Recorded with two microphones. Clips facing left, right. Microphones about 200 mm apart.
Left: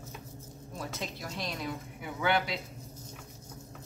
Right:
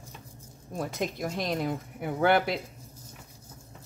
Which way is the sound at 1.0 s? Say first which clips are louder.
Right 9 dB; 50° right (ahead or behind).